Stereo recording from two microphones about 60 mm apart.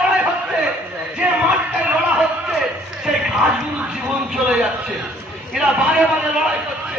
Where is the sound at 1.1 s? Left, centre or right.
Centre.